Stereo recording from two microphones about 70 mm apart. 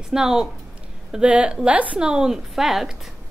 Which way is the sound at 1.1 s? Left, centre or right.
Centre.